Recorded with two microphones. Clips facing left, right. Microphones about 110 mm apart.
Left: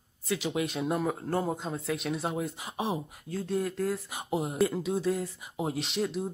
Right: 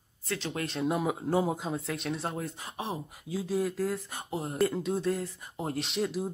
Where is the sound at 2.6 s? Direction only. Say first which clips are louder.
Left 4 dB; 15° left (ahead or behind).